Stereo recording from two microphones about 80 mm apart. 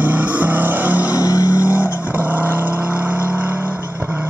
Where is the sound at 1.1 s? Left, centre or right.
Left.